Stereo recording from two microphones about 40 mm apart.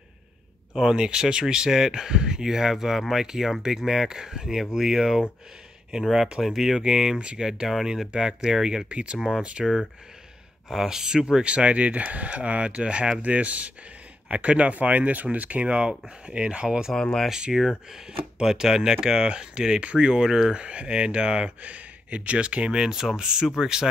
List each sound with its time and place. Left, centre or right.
0.9 s speech: centre
6.2 s speech: centre; by 7.4 s right
7.4 s speech: centre
8.8 s speech: right
10.7 s speech: centre
11.4 s speech: right
16.9 s speech: centre
17.5 s speech: centre
20.5 s speech: right